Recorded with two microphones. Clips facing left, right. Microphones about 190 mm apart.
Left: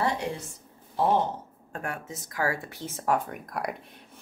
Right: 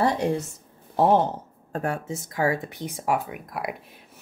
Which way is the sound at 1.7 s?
30° right (ahead or behind).